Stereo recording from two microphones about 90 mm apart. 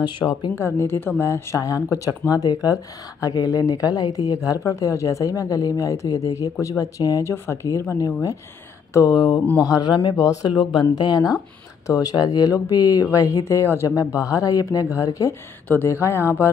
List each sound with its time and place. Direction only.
0.0 s speech: 60° left (ahead or behind)
0.6 s speech: 30° left (ahead or behind)
9.0 s speech: 50° left (ahead or behind)
10.5 s speech: 60° left (ahead or behind)
11.9 s speech: 40° left (ahead or behind)